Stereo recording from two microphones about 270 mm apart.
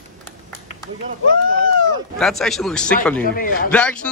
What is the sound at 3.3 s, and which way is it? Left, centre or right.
Speech, left.